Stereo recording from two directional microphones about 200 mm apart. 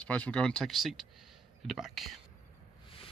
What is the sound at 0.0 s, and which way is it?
Speech, 5° left (ahead or behind).